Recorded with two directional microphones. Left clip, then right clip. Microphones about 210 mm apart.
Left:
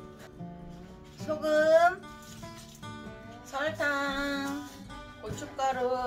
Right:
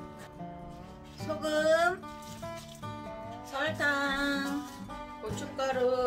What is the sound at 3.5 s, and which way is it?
Music, 30° right (ahead or behind).